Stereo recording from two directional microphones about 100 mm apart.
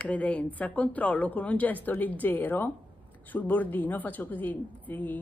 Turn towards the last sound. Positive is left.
turn(degrees=15)  # may be behind; listen again after turning